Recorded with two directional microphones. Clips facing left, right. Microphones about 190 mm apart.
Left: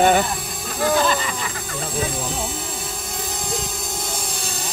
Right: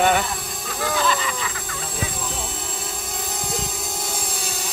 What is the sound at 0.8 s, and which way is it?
Speech, 35° left (ahead or behind).